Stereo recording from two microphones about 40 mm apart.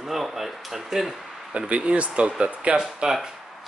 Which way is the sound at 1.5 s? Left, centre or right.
Right.